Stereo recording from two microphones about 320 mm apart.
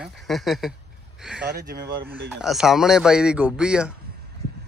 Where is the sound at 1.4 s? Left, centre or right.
Right.